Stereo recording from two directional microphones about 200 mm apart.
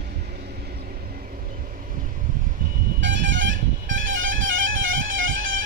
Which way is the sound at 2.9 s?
65° right (ahead or behind).